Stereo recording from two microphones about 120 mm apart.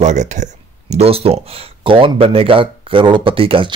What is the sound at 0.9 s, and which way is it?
Speech, 55° right (ahead or behind).